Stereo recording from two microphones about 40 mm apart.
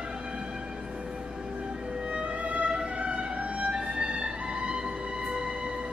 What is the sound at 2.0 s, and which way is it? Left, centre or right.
Music, right.